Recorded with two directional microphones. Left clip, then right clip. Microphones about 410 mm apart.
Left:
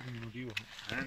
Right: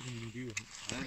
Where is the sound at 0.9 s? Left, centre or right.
Centre.